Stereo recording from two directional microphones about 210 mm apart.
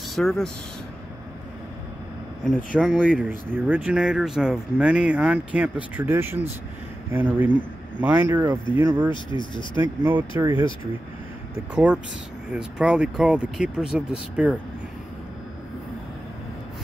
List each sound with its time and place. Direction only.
0.1 s speech: centre (ahead or behind)
2.4 s speech: centre (ahead or behind)
9.1 s speech: 20° left (ahead or behind)
10.0 s speech: 10° right (ahead or behind)
11.7 s speech: 5° right (ahead or behind)